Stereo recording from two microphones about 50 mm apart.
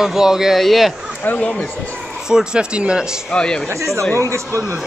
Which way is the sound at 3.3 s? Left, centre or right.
Centre.